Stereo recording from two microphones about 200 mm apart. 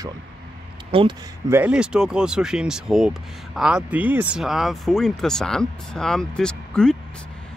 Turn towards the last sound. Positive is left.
turn(degrees=5)  # may be behind; listen again after turning